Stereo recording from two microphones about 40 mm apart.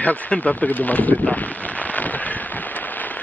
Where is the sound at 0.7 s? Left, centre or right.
Left.